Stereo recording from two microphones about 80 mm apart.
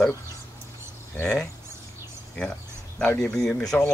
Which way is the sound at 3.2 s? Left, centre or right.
Centre.